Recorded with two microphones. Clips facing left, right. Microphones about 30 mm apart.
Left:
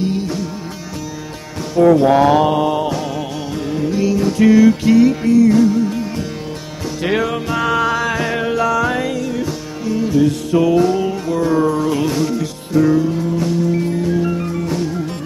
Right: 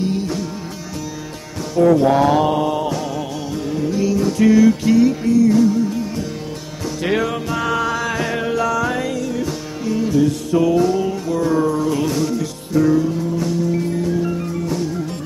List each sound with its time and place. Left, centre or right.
0.0 s music: centre
2.0 s mantra: left
3.7 s music: left
4.9 s music: left
7.0 s music: left
7.4 s music: left
9.8 s music: centre
10.2 s music: left
11.6 s music: left
12.0 s music: left
14.1 s music: left